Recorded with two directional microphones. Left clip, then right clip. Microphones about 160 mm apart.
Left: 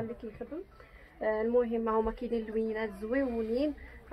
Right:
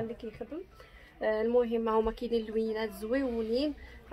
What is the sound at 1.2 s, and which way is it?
A woman's voice, 15° right (ahead or behind).